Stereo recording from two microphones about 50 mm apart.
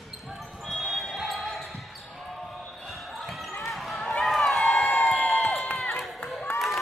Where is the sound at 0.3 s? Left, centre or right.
Centre.